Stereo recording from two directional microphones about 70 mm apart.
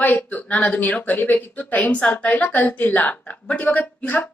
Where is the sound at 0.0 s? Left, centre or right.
Left.